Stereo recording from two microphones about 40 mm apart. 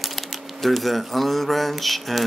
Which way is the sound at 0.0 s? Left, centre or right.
Centre.